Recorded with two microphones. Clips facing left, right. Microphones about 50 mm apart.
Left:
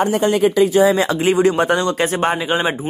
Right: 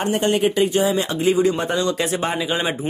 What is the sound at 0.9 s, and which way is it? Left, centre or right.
Speech, left.